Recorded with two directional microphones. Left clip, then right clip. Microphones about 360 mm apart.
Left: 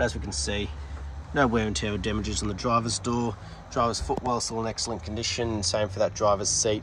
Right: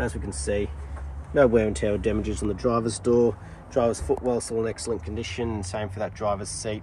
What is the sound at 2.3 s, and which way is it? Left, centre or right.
Speech, left.